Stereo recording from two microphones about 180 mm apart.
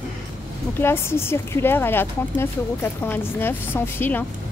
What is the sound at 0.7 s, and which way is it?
Speech, 15° left (ahead or behind).